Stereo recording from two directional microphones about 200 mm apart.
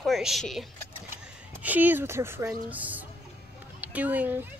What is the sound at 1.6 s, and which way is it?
A woman's voice, 10° right (ahead or behind).